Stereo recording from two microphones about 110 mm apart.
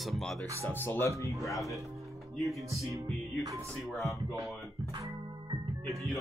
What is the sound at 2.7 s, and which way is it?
Music, 30° right (ahead or behind).